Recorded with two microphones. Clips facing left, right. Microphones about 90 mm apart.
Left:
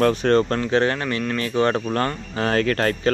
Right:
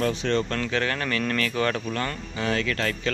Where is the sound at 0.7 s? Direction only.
30° left (ahead or behind).